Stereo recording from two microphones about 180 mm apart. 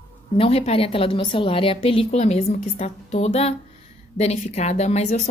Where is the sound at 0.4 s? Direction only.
35° left (ahead or behind).